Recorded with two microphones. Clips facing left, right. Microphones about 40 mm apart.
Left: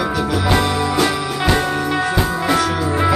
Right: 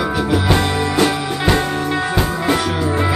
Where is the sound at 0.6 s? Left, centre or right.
Right.